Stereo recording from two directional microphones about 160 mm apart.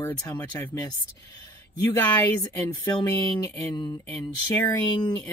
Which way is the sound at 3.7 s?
25° left (ahead or behind).